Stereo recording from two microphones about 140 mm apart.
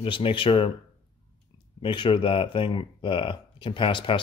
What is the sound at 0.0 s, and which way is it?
Speech, 40° left (ahead or behind).